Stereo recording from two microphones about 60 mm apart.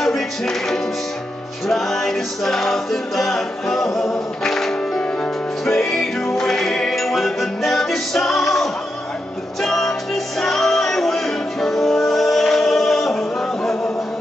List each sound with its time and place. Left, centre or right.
0.0 s music: centre